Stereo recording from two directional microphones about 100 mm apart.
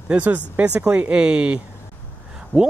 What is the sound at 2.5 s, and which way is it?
Speech, 20° left (ahead or behind).